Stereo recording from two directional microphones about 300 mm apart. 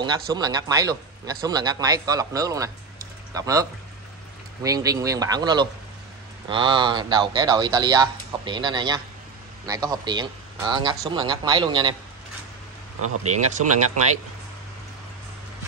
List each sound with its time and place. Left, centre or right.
0.0 s speech: centre
4.6 s speech: centre
13.2 s speech: right